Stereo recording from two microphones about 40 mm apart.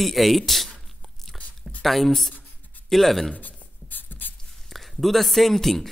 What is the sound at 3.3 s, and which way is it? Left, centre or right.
Writing, left.